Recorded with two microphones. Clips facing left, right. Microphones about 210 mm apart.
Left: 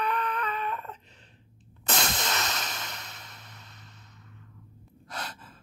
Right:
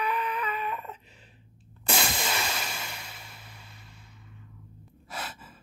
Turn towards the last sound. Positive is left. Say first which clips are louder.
# even
turn(degrees=-5)  # may be behind; listen again after turning